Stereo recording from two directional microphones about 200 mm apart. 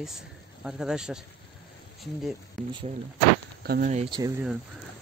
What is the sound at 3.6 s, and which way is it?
Speech, 50° right (ahead or behind).